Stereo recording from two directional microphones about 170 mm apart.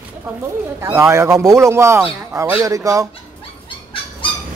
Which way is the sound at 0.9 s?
15° right (ahead or behind).